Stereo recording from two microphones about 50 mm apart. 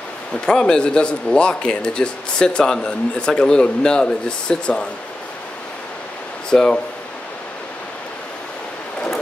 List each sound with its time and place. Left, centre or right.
0.3 s a man's voice: centre
6.5 s a man's voice: centre